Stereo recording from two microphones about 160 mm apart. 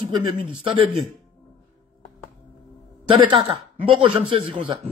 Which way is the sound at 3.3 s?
30° right (ahead or behind).